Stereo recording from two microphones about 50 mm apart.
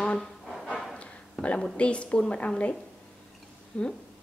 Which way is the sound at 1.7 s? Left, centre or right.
Left.